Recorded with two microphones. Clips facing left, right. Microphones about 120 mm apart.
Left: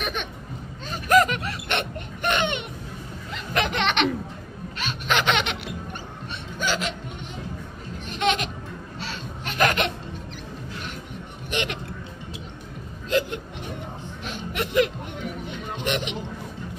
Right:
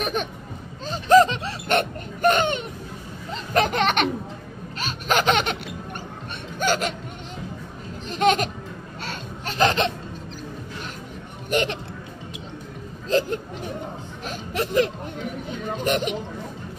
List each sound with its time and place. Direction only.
0.0 s speech: 40° right (ahead or behind)
0.8 s a sound: 30° right (ahead or behind)
1.7 s laughter: 40° right (ahead or behind)
6.6 s speech: 45° right (ahead or behind)
8.1 s speech: 40° right (ahead or behind)
9.5 s laughter: 30° right (ahead or behind)
11.5 s speech: 40° right (ahead or behind)
13.1 s hiccup: 35° right (ahead or behind)
14.2 s a sound: 35° right (ahead or behind)